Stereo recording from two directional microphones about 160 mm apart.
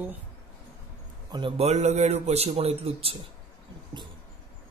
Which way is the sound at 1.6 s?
45° right (ahead or behind).